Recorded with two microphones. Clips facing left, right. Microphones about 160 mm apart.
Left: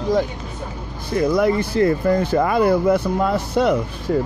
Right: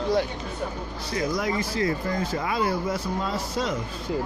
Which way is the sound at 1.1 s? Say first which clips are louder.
Left 9 dB; 60° left (ahead or behind).